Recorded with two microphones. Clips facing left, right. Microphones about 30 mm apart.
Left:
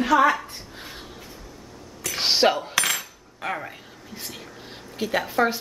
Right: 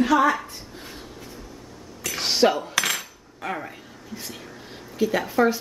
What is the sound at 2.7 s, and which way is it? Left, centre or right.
Cutlery, centre.